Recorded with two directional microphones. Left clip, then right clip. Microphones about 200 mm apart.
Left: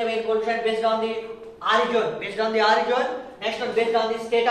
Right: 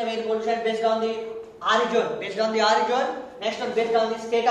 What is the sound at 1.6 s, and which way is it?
A man's voice, 15° right (ahead or behind).